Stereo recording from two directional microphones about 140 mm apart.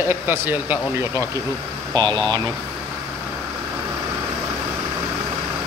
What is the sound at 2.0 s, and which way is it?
Speech, 30° right (ahead or behind).